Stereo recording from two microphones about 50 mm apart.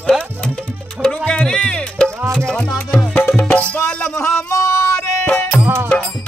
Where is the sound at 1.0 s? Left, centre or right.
Left.